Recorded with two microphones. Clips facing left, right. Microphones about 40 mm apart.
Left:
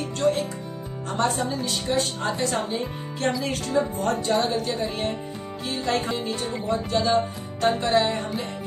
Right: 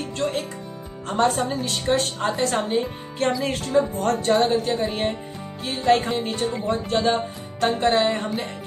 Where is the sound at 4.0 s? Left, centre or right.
Right.